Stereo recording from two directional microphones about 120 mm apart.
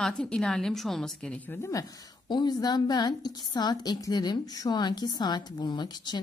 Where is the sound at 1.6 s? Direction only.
25° left (ahead or behind).